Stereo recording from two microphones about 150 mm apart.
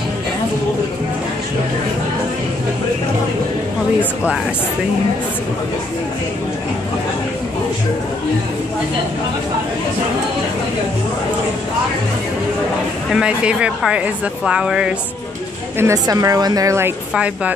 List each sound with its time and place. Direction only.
4.0 s speech: 10° right (ahead or behind)
13.1 s speech: 5° right (ahead or behind)
15.8 s a woman's voice: 25° right (ahead or behind)
17.1 s speech: 10° right (ahead or behind)